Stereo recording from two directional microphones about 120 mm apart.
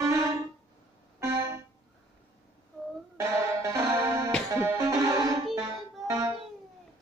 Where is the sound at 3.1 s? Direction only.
25° right (ahead or behind).